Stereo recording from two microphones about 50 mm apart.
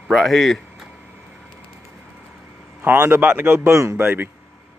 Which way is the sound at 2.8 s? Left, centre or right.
Right.